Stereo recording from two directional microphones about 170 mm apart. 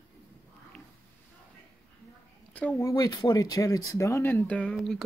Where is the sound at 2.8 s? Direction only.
20° left (ahead or behind).